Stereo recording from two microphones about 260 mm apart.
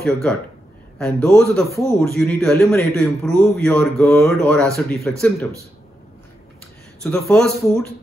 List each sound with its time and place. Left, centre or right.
0.0 s a man's voice: centre
7.0 s a man's voice: centre